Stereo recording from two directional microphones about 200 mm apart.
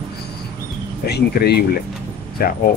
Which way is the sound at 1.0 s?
55° left (ahead or behind).